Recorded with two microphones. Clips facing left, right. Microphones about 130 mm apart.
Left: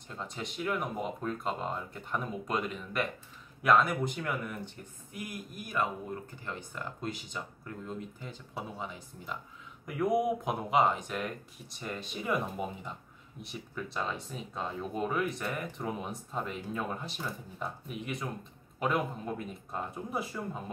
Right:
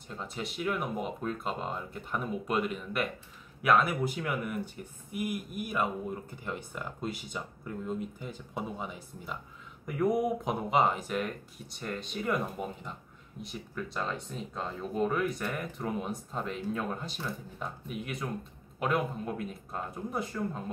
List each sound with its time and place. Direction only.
0.1 s speech: 5° right (ahead or behind)